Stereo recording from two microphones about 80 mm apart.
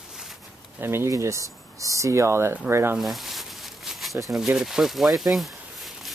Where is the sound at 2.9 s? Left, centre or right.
Centre.